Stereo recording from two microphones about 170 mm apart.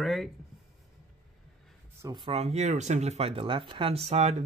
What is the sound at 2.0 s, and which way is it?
Speech, 25° right (ahead or behind).